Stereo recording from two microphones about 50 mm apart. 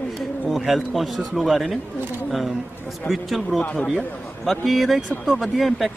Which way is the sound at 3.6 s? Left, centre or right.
Left.